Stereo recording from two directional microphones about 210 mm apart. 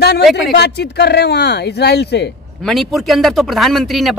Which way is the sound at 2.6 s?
Centre (ahead or behind).